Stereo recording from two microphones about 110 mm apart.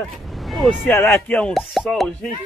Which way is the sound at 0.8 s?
20° left (ahead or behind).